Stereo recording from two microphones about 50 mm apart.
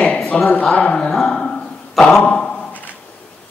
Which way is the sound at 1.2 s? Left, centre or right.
Centre.